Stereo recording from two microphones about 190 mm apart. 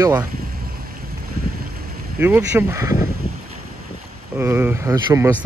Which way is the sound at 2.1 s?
10° right (ahead or behind).